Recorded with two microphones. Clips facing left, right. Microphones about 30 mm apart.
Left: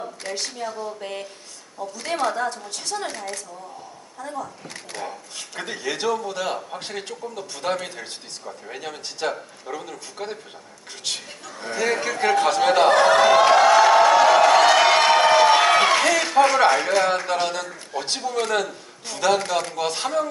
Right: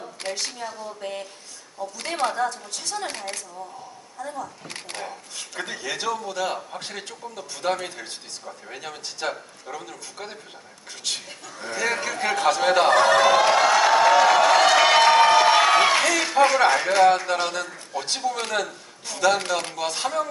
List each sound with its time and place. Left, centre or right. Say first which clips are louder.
0.3 s speech: left 1 dB; centre
2.0 s a woman's voice: left 2 dB; right
2.3 s a man's voice: even; centre
3.1 s a woman's voice: left 1 dB; right
4.2 s a man's voice: left 1 dB; centre
4.9 s a woman's voice: left 3 dB; right
5.5 s a man's voice: left 2 dB; centre
12.0 s a sound: left 3 dB; centre
18.5 s a man's voice: left 3 dB; centre